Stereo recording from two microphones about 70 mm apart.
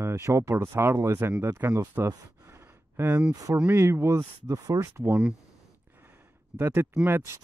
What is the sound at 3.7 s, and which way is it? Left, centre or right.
Speech, right.